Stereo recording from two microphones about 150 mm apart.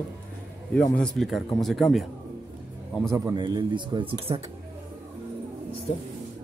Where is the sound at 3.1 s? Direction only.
25° right (ahead or behind).